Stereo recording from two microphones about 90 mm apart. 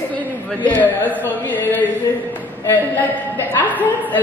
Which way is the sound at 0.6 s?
20° left (ahead or behind).